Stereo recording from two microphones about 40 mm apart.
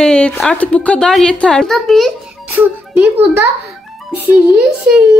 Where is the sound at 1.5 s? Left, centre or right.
Centre.